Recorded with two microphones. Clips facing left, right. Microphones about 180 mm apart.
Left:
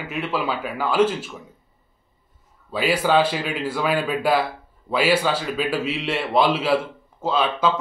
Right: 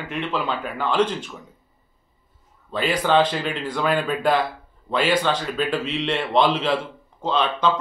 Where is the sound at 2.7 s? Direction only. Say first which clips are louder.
Left 1 dB; 10° left (ahead or behind).